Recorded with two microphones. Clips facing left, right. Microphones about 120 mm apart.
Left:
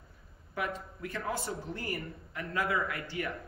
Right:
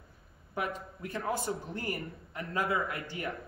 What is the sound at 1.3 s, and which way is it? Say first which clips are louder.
Speech: right 2 dB; 50° right (ahead or behind).